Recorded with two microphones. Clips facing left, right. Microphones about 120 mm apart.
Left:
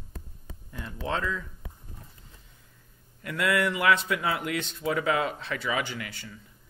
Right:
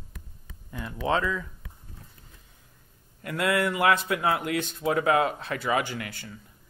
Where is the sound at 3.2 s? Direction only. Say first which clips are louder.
Right 1 dB; 40° right (ahead or behind).